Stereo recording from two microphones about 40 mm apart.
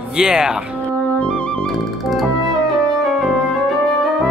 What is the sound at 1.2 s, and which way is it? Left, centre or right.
Music, left.